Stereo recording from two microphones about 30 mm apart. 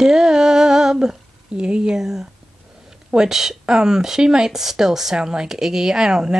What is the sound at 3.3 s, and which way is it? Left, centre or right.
Speech, centre.